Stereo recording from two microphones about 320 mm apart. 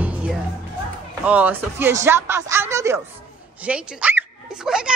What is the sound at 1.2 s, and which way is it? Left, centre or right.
Speech, centre.